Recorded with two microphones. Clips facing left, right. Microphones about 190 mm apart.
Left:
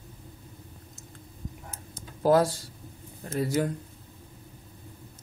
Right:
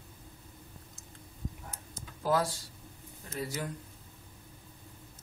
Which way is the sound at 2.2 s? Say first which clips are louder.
Left 8 dB; 45° left (ahead or behind).